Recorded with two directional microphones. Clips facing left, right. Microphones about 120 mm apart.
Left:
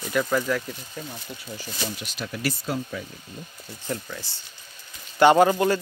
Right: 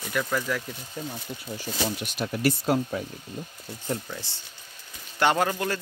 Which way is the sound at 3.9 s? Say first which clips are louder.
Even; 20° right (ahead or behind).